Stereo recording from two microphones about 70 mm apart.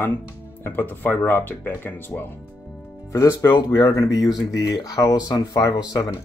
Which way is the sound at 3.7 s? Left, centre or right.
Left.